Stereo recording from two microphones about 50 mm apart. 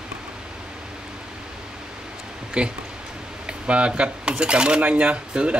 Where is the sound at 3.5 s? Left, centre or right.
Right.